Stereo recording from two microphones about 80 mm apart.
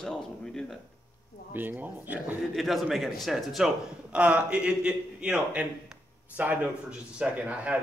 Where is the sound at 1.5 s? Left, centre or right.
Right.